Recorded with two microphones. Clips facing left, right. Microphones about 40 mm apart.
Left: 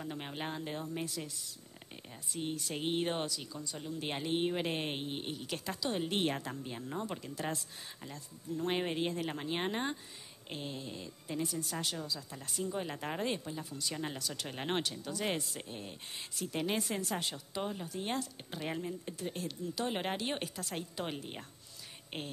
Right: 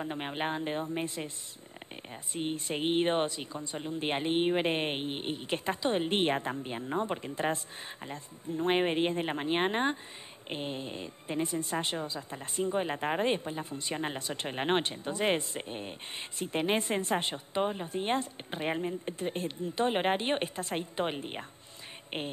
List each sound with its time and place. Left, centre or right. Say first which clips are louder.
0.0 s a woman's voice: right 6 dB; right
2.3 s a woman's voice: right 5 dB; right